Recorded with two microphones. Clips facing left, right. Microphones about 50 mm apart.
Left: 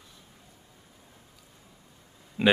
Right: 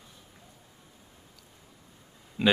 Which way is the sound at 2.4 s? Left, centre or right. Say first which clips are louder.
Left 2 dB; centre.